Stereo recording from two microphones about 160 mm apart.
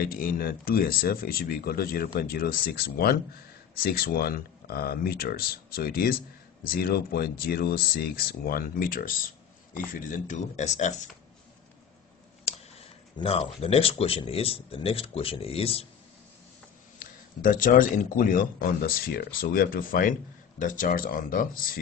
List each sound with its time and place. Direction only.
0.0 s speech: 65° left (ahead or behind); by 11.0 s 45° left (ahead or behind)
13.2 s speech: 35° left (ahead or behind)
17.0 s speech: 60° left (ahead or behind)